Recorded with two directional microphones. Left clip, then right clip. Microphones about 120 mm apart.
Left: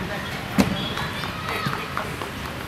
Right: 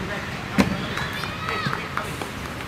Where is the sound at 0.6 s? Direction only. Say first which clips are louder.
Even; 5° left (ahead or behind).